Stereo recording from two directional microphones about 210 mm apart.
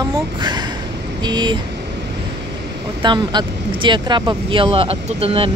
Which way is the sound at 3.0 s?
20° right (ahead or behind).